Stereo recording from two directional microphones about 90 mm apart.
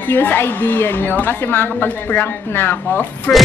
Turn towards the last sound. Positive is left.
turn(degrees=15)  # may be behind; listen again after turning